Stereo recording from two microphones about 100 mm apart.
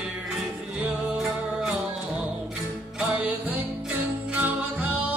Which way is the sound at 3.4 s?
15° right (ahead or behind).